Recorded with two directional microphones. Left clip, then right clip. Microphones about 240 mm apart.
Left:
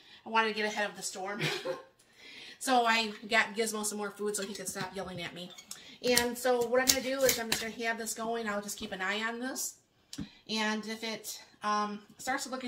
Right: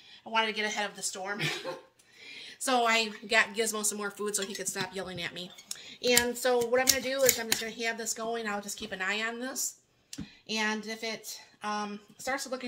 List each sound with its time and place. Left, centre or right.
0.2 s speech: right
2.3 s speech: right